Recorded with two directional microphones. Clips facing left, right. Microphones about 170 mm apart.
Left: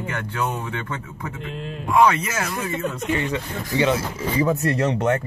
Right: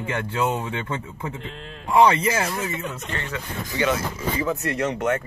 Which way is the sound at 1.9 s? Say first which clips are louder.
Right 1 dB; 30° right (ahead or behind).